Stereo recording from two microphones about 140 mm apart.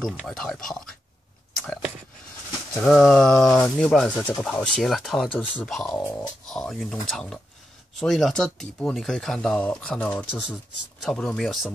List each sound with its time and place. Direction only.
0.0 s speech: 5° left (ahead or behind)
2.7 s speech: 5° left (ahead or behind)